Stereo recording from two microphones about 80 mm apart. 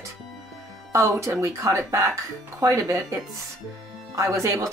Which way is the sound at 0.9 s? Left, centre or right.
Right.